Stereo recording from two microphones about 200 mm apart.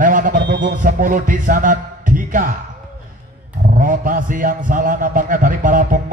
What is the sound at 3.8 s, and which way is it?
A man's voice, 40° right (ahead or behind).